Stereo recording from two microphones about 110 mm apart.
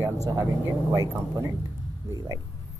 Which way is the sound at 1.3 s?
25° right (ahead or behind).